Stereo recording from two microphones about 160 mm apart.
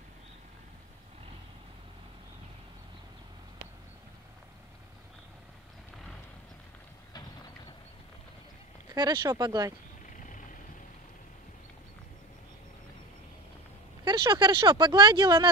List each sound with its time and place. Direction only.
8.9 s speech: 25° right (ahead or behind)
14.0 s speech: 30° right (ahead or behind)